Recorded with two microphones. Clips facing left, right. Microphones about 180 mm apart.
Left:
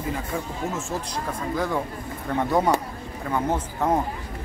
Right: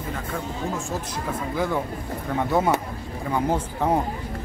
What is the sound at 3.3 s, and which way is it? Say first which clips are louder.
Speech: right 1 dB; 10° right (ahead or behind).